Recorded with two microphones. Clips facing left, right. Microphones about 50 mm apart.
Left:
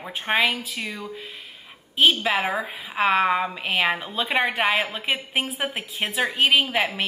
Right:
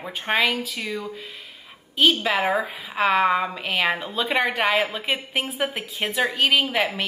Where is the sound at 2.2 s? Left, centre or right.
Centre.